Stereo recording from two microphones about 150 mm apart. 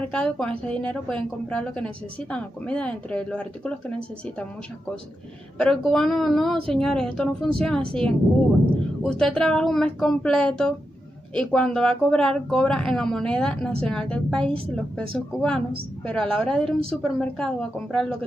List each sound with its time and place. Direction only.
0.1 s a woman's voice: 5° left (ahead or behind)
5.6 s speech: 5° left (ahead or behind)
9.0 s speech: 5° left (ahead or behind)